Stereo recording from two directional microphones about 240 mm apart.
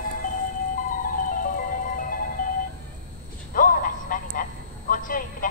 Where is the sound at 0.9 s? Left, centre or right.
Left.